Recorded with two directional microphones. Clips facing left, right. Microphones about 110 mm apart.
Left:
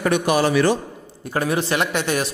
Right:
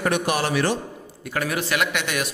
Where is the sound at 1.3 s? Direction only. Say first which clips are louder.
Left 4 dB; 30° left (ahead or behind).